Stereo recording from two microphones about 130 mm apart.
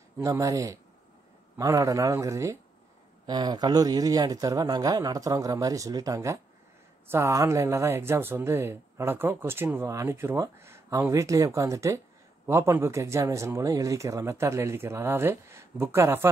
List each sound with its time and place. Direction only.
0.2 s speech: 25° right (ahead or behind)